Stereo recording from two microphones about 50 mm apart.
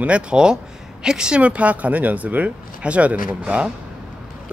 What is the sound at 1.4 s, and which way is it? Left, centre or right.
Speech, right.